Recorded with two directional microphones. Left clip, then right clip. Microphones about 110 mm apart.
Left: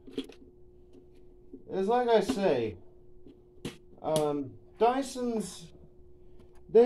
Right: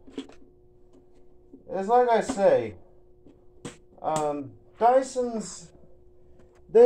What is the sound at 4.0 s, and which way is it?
Speech, 35° left (ahead or behind).